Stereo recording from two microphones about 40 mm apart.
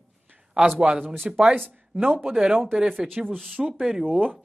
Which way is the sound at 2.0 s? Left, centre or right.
Right.